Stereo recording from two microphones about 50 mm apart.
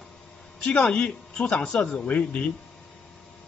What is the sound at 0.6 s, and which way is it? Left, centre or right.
Speech, left.